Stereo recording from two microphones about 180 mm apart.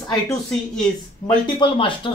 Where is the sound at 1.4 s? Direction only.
25° left (ahead or behind).